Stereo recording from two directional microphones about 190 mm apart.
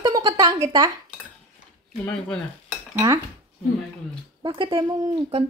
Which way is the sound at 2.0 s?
5° left (ahead or behind).